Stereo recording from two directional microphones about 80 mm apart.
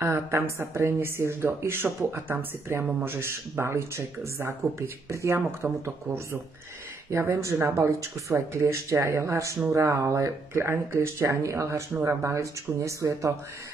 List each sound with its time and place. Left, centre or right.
0.0 s speech: right
7.1 s speech: right